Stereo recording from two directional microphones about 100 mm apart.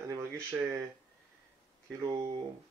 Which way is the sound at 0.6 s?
25° right (ahead or behind).